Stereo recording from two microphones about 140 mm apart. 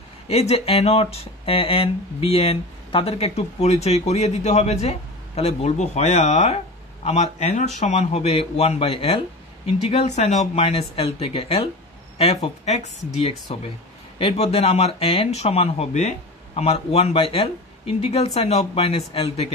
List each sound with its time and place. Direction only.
0.3 s speech: 45° left (ahead or behind)